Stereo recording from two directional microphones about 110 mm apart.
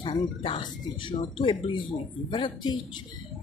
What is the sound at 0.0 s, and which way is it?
Speech, 50° left (ahead or behind).